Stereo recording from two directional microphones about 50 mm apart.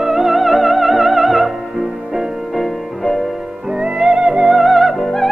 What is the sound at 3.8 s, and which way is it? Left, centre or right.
Music, centre.